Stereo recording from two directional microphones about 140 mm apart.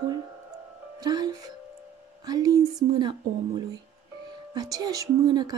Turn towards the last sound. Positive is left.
turn(degrees=-30)  # may be behind; listen again after turning